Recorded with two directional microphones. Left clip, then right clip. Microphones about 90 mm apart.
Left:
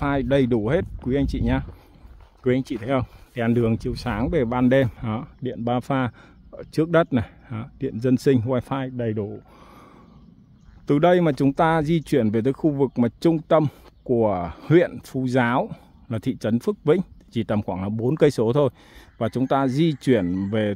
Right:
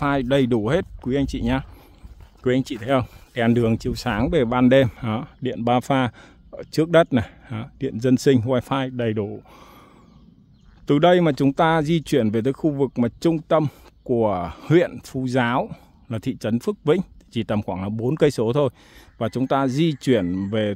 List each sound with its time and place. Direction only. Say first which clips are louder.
0.0 s speech: right 1 dB; 35° right (ahead or behind)
1.0 s speech: right 1 dB; 25° right (ahead or behind)
2.9 s speech: right 4 dB; 55° right (ahead or behind)
5.4 s speech: right 5 dB; 65° right (ahead or behind)
5.9 s speech: right 3 dB; 35° right (ahead or behind)
8.8 s speech: right 3 dB; 75° right (ahead or behind)
10.9 s speech: right 2 dB; 45° right (ahead or behind); by 20.7 s 20° right (ahead or behind)